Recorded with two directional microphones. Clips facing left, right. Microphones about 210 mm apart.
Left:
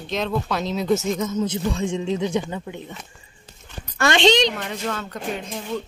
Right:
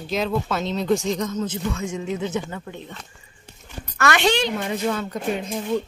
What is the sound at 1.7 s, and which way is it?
Speech, 30° left (ahead or behind).